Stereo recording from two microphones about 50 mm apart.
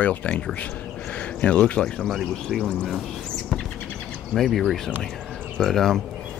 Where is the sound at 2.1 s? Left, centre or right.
Centre.